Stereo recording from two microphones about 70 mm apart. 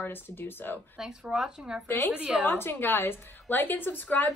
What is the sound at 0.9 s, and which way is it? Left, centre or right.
Speech, centre.